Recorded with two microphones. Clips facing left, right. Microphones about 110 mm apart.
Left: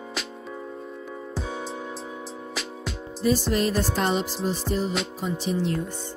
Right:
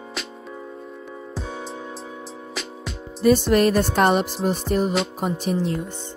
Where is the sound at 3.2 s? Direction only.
65° right (ahead or behind).